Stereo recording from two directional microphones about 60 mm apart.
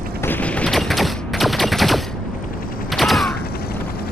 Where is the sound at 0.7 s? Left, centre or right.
Centre.